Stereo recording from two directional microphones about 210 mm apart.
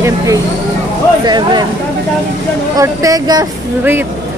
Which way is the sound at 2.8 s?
15° right (ahead or behind).